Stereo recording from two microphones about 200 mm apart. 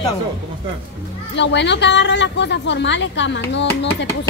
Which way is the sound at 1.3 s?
60° left (ahead or behind).